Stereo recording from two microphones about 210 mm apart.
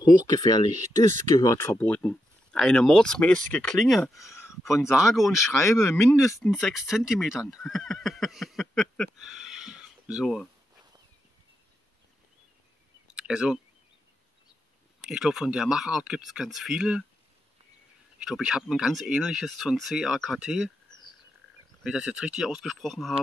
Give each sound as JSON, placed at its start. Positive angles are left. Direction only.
{"t": 0.0, "sound": "speech", "side_deg": 20}
{"t": 0.7, "sound": "speech", "side_deg": -35}
{"t": 1.0, "sound": "speech", "side_deg": 15}
{"t": 4.3, "sound": "a sound", "side_deg": 10}
{"t": 4.6, "sound": "speech", "side_deg": 0}
{"t": 5.6, "sound": "speech", "side_deg": 15}
{"t": 6.4, "sound": "speech", "side_deg": 0}
{"t": 13.1, "sound": "a sound", "side_deg": -5}
{"t": 15.0, "sound": "speech", "side_deg": 0}
{"t": 18.2, "sound": "speech", "side_deg": 0}
{"t": 21.8, "sound": "speech", "side_deg": -5}